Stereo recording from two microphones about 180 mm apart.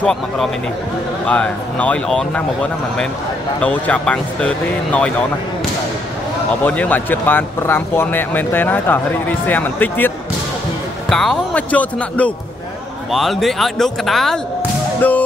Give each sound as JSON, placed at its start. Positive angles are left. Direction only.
{"t": 0.0, "sound": "speech", "side_deg": 5}
{"t": 3.6, "sound": "speech", "side_deg": 5}
{"t": 6.6, "sound": "speech", "side_deg": 10}